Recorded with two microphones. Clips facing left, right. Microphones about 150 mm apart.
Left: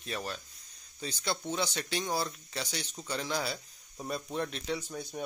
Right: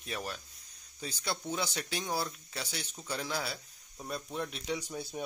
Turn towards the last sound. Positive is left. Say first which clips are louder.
# left 1 dB
turn(degrees=-5)  # may be behind; listen again after turning